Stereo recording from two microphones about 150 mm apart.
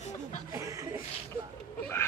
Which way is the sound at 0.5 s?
20° right (ahead or behind).